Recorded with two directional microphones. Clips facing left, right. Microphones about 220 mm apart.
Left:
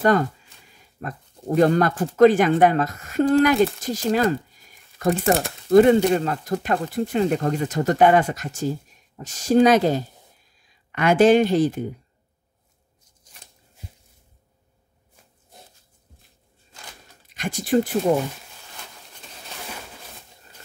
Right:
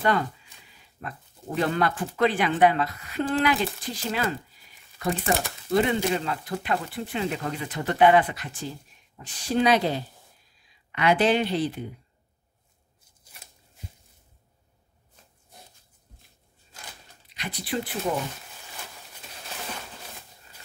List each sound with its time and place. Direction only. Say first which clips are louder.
0.0 s speech: left 6 dB; 45° left (ahead or behind)
13.4 s a sound: left 1 dB; 5° right (ahead or behind)
17.3 s speech: left 10 dB; 45° left (ahead or behind)